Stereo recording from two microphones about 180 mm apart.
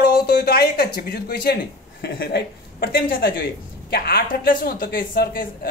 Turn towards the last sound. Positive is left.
turn(degrees=50)  # may be behind; listen again after turning